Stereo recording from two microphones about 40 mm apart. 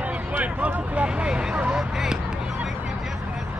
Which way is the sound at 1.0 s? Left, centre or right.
Right.